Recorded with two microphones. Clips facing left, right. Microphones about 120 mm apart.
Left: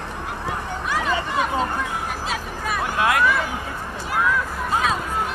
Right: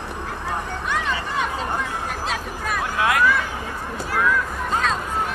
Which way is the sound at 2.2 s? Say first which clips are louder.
Even; centre (ahead or behind).